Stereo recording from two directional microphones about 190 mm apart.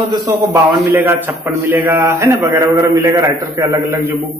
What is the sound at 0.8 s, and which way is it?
Speech, 10° right (ahead or behind).